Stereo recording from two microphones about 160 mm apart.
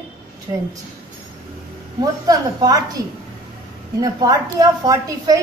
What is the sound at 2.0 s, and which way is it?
A woman's voice, 25° right (ahead or behind).